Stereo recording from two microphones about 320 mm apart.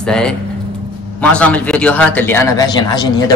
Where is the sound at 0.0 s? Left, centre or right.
Centre.